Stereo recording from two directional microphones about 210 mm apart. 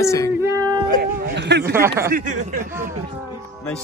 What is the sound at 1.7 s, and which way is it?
Speech, 10° right (ahead or behind).